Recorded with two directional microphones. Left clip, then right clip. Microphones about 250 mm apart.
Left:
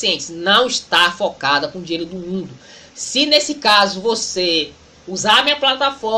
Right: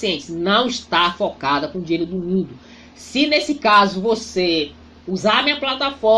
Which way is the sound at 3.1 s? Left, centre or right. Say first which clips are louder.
Left 3 dB; right.